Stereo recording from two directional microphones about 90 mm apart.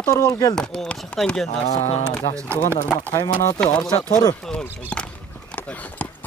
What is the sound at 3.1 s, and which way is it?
Speech, 35° left (ahead or behind).